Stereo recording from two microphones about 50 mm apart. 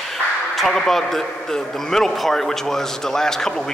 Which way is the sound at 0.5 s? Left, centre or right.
Centre.